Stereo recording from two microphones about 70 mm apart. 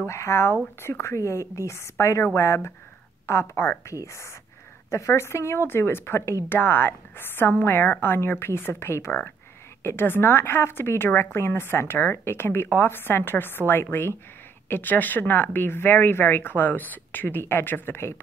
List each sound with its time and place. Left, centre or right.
0.0 s a woman's voice: left